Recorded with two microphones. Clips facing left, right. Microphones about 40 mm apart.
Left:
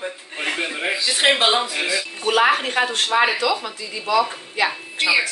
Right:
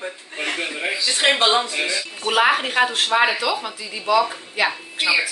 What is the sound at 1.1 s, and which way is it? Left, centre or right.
Speech, centre.